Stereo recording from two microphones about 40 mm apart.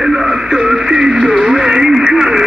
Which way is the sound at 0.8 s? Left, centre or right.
Centre.